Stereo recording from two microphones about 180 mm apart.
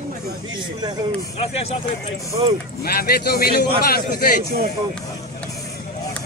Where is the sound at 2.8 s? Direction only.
60° left (ahead or behind).